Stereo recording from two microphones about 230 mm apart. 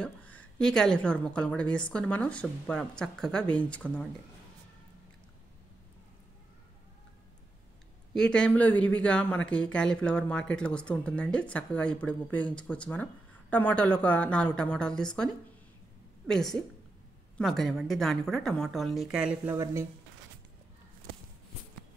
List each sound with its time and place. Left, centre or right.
0.0 s speech: centre
8.1 s speech: centre